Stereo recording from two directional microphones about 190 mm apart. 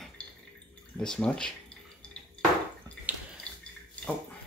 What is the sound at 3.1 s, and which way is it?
Bathtub, 10° right (ahead or behind).